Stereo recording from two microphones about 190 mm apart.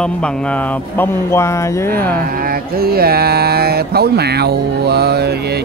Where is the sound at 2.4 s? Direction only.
50° right (ahead or behind).